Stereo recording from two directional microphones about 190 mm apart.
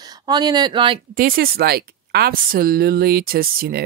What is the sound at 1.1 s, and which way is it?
Speech, 50° right (ahead or behind).